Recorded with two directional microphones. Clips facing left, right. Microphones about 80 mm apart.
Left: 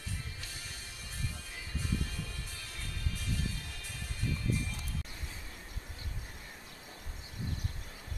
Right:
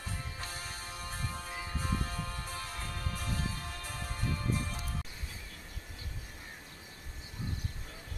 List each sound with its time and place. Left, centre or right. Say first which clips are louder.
0.4 s music: right 5 dB; right